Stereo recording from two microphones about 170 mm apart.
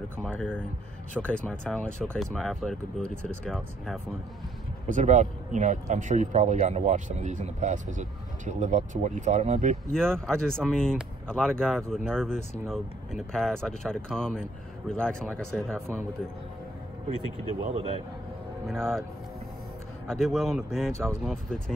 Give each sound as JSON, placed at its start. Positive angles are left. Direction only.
{"t": 0.2, "sound": "speech", "side_deg": 5}
{"t": 4.8, "sound": "speech", "side_deg": -45}
{"t": 9.9, "sound": "speech", "side_deg": 5}
{"t": 17.6, "sound": "a man's voice", "side_deg": -40}
{"t": 18.7, "sound": "speech", "side_deg": 0}
{"t": 20.1, "sound": "speech", "side_deg": 0}